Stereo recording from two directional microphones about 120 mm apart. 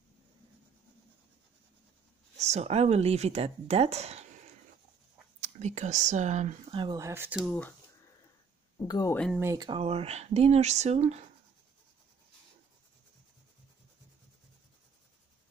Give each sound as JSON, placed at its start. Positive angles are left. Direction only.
{"t": 2.3, "sound": "speech", "side_deg": -65}
{"t": 5.4, "sound": "speech", "side_deg": -75}
{"t": 6.7, "sound": "speech", "side_deg": -45}
{"t": 7.0, "sound": "speech", "side_deg": -25}
{"t": 7.2, "sound": "speech", "side_deg": -5}
{"t": 8.7, "sound": "speech", "side_deg": 30}
{"t": 9.8, "sound": "speech", "side_deg": -55}